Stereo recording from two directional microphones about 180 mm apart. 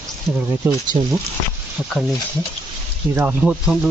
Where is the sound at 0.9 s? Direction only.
30° right (ahead or behind).